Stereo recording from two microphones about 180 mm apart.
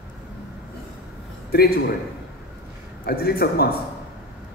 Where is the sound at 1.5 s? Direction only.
60° left (ahead or behind).